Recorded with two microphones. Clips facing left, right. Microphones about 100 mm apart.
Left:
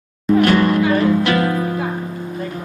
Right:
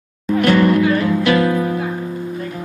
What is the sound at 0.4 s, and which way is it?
Speech, 35° left (ahead or behind).